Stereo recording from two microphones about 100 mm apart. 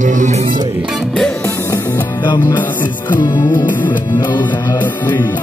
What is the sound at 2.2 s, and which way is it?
Music, 45° left (ahead or behind).